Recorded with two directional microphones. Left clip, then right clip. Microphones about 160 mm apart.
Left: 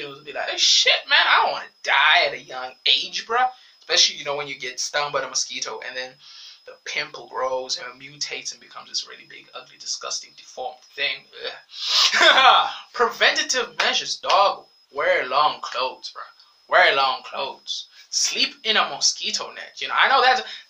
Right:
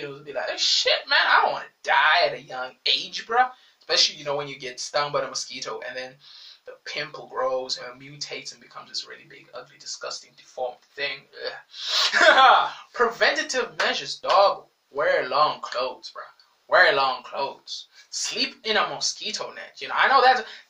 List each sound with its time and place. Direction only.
0.3 s speech: 15° left (ahead or behind)
16.7 s speech: 15° left (ahead or behind)